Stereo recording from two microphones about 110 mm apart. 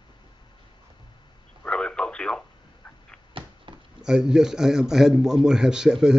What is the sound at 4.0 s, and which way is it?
A man's voice, 5° right (ahead or behind).